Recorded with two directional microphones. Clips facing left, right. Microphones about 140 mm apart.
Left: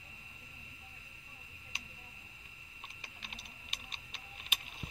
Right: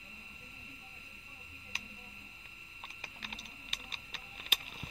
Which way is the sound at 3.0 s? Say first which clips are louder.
Right 5 dB; 40° right (ahead or behind).